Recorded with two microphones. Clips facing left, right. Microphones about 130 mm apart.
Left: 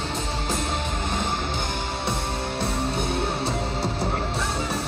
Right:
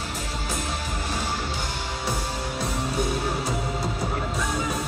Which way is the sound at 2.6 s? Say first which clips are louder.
Even; 30° left (ahead or behind).